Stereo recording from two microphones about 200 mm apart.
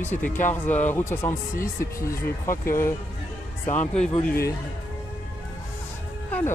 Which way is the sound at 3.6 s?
10° left (ahead or behind).